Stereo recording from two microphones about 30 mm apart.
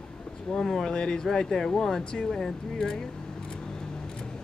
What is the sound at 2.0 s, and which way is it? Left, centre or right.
Speech, left.